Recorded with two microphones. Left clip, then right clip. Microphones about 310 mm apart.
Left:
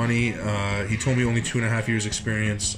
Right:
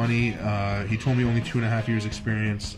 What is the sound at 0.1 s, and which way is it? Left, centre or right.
Speech, centre.